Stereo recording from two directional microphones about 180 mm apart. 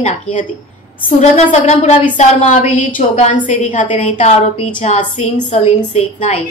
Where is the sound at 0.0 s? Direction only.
45° left (ahead or behind).